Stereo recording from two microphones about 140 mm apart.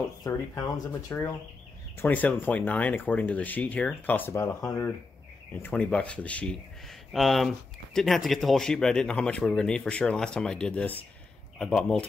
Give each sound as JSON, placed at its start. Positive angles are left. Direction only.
{"t": 0.2, "sound": "speech", "side_deg": 25}
{"t": 2.0, "sound": "speech", "side_deg": 10}